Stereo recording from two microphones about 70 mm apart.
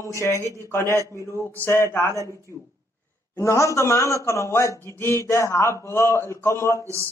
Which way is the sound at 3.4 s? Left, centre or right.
Left.